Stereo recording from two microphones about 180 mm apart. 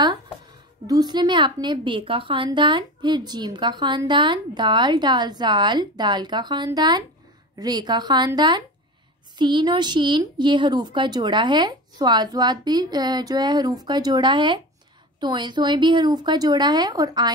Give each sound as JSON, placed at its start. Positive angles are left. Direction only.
{"t": 0.8, "sound": "a woman's voice", "side_deg": -20}